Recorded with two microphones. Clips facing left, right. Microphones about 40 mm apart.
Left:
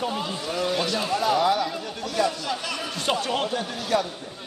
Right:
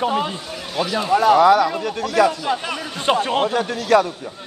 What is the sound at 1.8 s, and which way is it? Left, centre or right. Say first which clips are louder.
Speech: right 8 dB; right.